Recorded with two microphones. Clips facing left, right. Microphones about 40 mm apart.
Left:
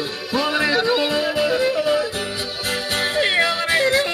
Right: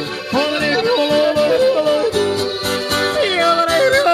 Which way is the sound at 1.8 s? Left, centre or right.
Right.